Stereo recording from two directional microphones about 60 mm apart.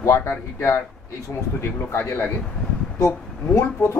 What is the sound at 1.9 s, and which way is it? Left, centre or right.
Speech, left.